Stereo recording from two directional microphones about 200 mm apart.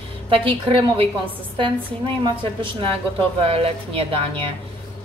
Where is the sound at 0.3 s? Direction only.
25° right (ahead or behind).